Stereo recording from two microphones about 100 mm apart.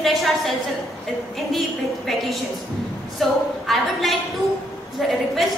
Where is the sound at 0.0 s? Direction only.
Centre (ahead or behind).